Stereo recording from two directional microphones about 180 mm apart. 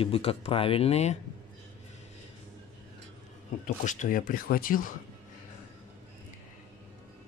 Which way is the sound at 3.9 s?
45° left (ahead or behind).